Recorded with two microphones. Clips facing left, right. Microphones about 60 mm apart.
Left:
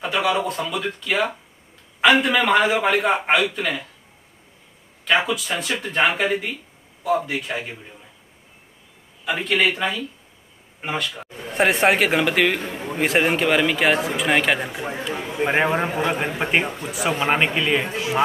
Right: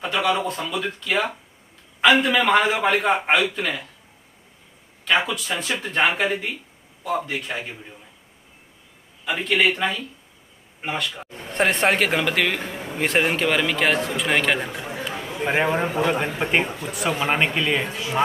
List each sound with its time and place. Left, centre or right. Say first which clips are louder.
0.0 s a man's voice: left 1 dB; centre
5.0 s a man's voice: left 1 dB; centre
9.2 s a man's voice: even; centre
15.1 s a sound: left 2 dB; centre
15.9 s a man's voice: right 1 dB; centre